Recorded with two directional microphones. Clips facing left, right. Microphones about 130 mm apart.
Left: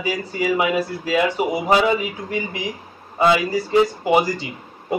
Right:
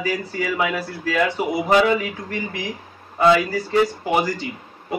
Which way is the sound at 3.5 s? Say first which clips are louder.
Left 2 dB; 15° left (ahead or behind).